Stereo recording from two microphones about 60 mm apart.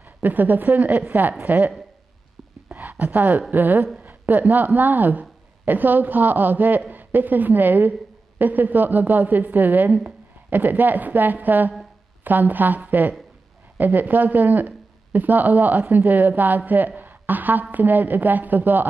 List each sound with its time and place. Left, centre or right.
0.2 s a woman's voice: right
2.7 s a sound: right
3.5 s a woman's voice: right